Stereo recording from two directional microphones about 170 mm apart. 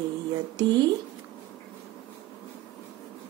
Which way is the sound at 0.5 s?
25° right (ahead or behind).